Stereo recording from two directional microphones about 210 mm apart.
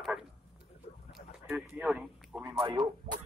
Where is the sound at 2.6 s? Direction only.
25° right (ahead or behind).